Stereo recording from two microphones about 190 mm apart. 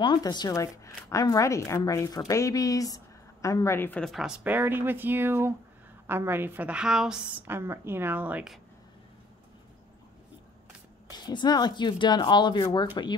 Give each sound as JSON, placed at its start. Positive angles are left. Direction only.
{"t": 0.0, "sound": "a woman's voice", "side_deg": 20}
{"t": 11.1, "sound": "a woman's voice", "side_deg": 20}